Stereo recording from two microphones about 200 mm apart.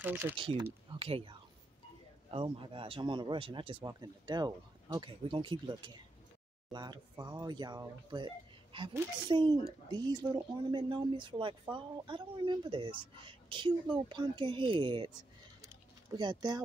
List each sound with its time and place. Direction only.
0.0 s speech: 10° right (ahead or behind)
0.9 s speech: 30° right (ahead or behind)
2.3 s a woman's voice: 25° right (ahead or behind)
15.6 s a sound: 20° right (ahead or behind)